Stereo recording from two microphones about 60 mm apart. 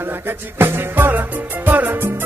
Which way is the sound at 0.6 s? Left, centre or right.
Right.